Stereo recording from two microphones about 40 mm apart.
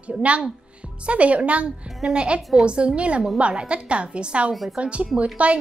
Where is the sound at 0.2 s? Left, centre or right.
Right.